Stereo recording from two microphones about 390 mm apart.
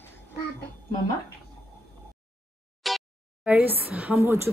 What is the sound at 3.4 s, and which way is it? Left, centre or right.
Speech, centre.